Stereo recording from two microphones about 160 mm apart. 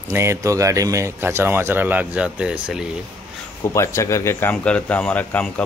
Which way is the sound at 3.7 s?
20° left (ahead or behind).